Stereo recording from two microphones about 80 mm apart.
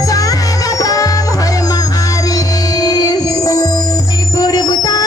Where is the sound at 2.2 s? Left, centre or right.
Left.